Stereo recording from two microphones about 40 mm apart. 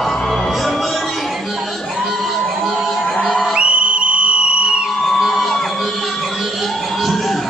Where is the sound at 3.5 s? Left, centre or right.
Right.